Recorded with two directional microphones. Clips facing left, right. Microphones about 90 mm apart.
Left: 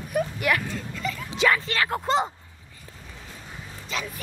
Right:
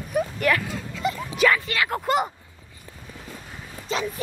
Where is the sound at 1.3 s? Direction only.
25° left (ahead or behind).